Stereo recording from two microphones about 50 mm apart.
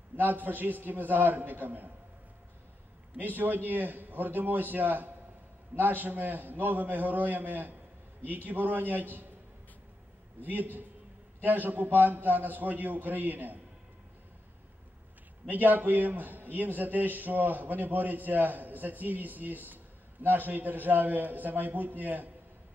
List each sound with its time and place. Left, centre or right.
0.1 s a man's voice: right
3.2 s a man's voice: right
10.4 s a man's voice: right
15.4 s a man's voice: right